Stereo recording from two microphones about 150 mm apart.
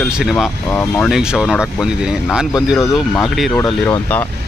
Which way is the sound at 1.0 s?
5° right (ahead or behind).